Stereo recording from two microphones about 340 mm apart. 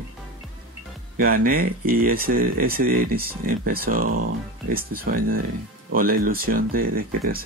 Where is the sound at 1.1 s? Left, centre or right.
Right.